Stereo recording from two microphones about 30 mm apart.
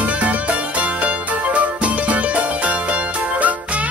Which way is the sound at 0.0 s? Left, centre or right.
Right.